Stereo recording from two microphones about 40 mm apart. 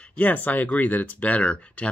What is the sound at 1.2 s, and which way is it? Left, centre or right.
Speech, left.